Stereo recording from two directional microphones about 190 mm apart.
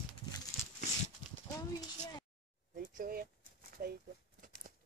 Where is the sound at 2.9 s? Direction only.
50° right (ahead or behind).